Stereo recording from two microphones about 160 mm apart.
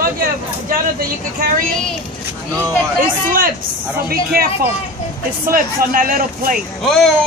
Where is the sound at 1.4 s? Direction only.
65° right (ahead or behind).